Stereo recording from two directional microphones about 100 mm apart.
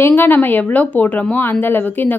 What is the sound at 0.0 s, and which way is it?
A woman's voice, 20° left (ahead or behind).